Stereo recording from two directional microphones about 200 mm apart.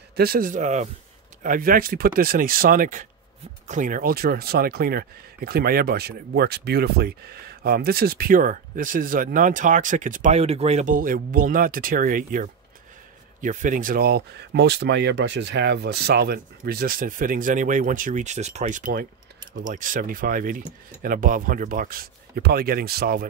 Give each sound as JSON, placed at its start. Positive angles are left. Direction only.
{"t": 0.1, "sound": "speech", "side_deg": -50}